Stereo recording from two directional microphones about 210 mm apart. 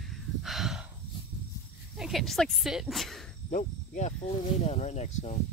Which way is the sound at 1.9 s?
Centre (ahead or behind).